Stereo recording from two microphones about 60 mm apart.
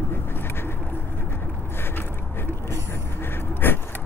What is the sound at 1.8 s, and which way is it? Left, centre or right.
Vehicle, left.